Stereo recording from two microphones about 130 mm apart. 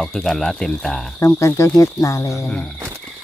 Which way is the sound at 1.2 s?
25° left (ahead or behind).